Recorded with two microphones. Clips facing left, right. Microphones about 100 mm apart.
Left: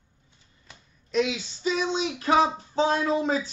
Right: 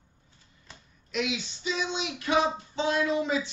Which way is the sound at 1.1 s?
30° left (ahead or behind).